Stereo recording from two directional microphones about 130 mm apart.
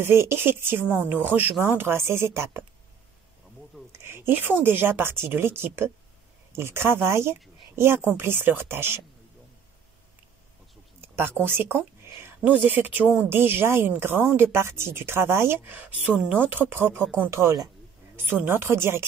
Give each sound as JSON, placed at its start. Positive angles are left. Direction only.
{"t": 0.0, "sound": "speech", "side_deg": -20}
{"t": 3.9, "sound": "speech", "side_deg": -20}
{"t": 11.1, "sound": "speech", "side_deg": -15}